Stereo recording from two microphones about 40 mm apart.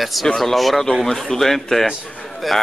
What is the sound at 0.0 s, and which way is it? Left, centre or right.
Speech, centre.